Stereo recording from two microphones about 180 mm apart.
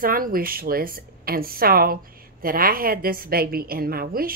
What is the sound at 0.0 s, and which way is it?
A woman's voice, 50° right (ahead or behind).